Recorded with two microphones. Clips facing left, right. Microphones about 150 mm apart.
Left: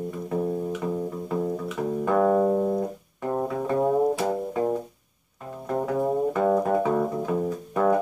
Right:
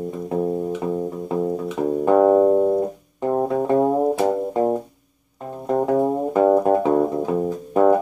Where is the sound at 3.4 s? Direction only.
40° right (ahead or behind).